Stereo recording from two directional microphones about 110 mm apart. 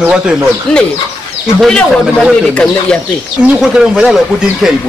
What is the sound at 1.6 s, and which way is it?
Speech, centre (ahead or behind).